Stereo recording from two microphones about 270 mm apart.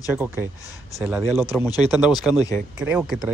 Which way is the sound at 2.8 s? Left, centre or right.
Centre.